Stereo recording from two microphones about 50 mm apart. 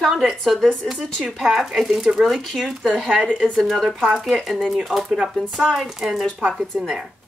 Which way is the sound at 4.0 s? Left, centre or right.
Centre.